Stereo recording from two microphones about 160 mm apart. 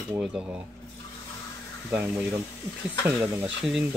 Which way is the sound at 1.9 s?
10° right (ahead or behind).